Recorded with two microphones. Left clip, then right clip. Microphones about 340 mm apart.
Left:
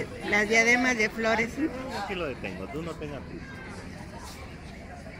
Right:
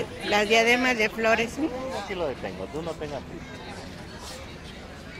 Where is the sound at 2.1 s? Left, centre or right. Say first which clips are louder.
Right 3 dB; right.